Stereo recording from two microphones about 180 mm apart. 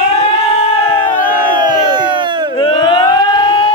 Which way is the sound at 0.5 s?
35° left (ahead or behind).